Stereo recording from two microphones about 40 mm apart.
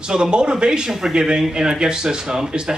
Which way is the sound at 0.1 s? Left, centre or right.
Centre.